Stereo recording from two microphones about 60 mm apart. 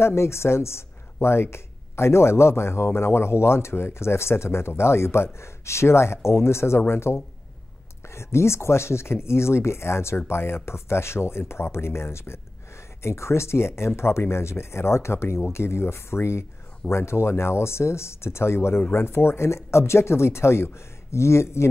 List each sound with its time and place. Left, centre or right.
0.0 s speech: left